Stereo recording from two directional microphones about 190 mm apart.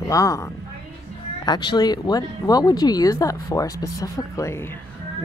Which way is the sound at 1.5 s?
25° left (ahead or behind).